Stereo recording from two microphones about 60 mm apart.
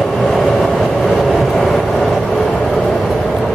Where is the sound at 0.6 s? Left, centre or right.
Centre.